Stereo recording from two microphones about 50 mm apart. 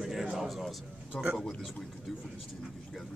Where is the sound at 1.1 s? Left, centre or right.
Centre.